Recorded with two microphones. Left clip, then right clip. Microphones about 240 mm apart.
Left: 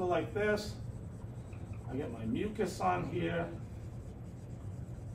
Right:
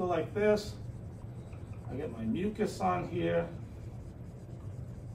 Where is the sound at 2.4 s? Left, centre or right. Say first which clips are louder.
Right 1 dB; centre.